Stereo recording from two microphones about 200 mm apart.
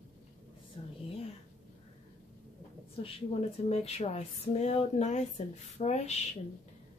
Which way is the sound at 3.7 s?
30° left (ahead or behind).